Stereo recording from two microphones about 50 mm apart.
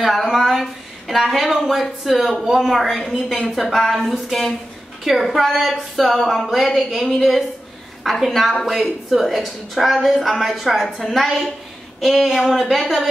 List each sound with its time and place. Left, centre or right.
0.0 s a woman's voice: centre
5.0 s a woman's voice: centre